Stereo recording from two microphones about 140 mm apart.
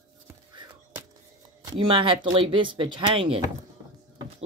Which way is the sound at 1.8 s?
35° right (ahead or behind).